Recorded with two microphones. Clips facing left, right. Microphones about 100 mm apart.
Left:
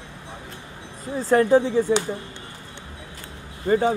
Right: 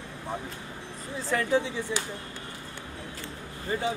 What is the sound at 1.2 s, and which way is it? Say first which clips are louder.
Speech: left 9 dB; 45° left (ahead or behind).